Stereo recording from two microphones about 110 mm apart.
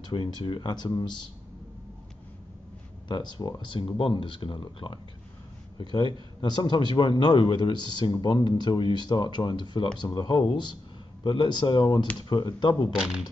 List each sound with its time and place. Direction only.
0.1 s a man's voice: 50° left (ahead or behind)
3.1 s a man's voice: 45° left (ahead or behind)
12.9 s speech: 5° right (ahead or behind)